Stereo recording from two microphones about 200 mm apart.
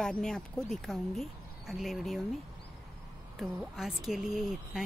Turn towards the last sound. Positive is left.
turn(degrees=0)  # may be behind; listen again after turning